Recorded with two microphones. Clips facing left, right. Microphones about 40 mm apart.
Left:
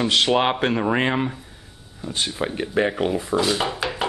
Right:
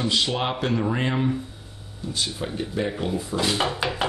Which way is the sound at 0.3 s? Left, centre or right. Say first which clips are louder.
Left 6 dB; left.